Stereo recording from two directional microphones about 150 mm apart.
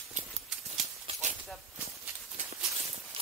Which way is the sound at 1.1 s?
55° right (ahead or behind).